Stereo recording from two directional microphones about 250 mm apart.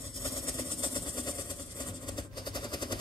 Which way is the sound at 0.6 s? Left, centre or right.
Centre.